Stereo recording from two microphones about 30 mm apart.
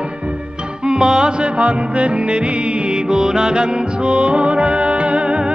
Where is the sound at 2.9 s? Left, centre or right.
Right.